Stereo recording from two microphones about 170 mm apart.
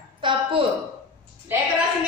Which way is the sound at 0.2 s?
30° right (ahead or behind).